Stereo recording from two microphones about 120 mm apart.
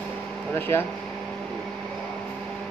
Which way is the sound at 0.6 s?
20° left (ahead or behind).